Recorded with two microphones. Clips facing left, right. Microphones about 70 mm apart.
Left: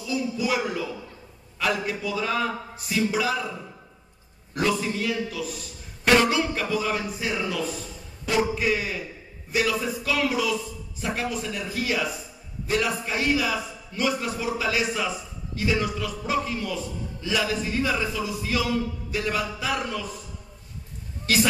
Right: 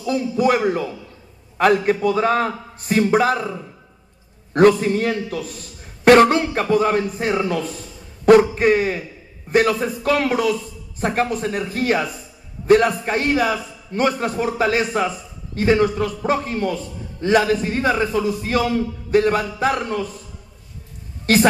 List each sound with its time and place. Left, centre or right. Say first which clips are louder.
0.0 s a man's voice: right 8 dB; right
4.6 s a man's voice: right 11 dB; right
21.3 s a man's voice: right 7 dB; right